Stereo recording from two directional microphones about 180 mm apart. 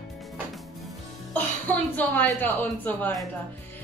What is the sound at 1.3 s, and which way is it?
Speech, 10° left (ahead or behind).